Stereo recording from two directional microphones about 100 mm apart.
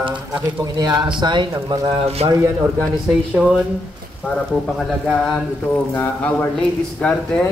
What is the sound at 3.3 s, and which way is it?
Speech, 5° right (ahead or behind).